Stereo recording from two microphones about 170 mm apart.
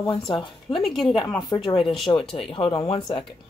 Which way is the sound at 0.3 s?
30° left (ahead or behind).